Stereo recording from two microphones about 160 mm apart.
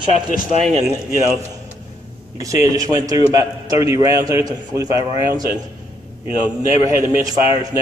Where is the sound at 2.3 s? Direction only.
20° right (ahead or behind).